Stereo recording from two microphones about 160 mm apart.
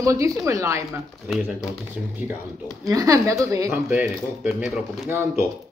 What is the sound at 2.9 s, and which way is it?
Speech, 20° right (ahead or behind).